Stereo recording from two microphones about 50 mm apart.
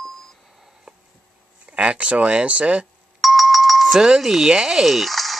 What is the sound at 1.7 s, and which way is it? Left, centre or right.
Speech, right.